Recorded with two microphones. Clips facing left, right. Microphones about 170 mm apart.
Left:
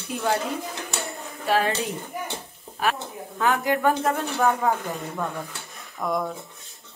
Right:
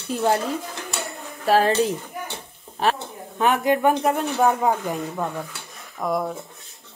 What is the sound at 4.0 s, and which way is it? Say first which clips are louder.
Speech: right 3 dB; centre (ahead or behind).